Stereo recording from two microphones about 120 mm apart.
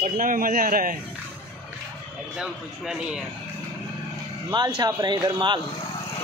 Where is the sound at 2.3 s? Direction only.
5° right (ahead or behind).